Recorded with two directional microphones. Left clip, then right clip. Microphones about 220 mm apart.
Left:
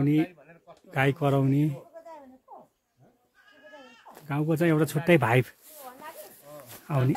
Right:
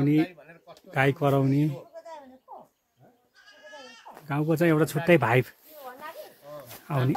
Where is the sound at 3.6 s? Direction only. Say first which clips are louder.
Right 4 dB; 45° right (ahead or behind).